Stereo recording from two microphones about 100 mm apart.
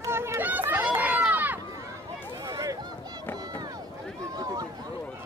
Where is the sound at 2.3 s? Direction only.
40° right (ahead or behind).